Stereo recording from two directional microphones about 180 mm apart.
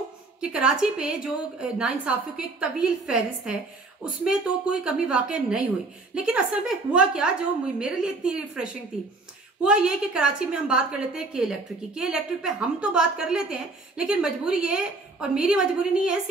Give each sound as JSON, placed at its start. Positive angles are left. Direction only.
{"t": 0.4, "sound": "a woman's voice", "side_deg": -5}